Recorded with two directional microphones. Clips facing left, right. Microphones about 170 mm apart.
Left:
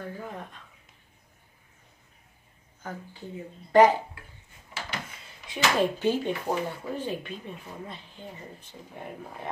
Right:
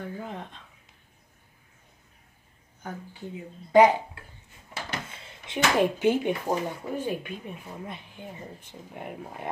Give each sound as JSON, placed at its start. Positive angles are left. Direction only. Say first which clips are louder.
{"t": 0.0, "sound": "speech", "louder": "right 1 dB", "side_deg": -20}
{"t": 2.8, "sound": "speech", "louder": "right 1 dB", "side_deg": -15}
{"t": 5.1, "sound": "speech", "louder": "right 5 dB", "side_deg": -20}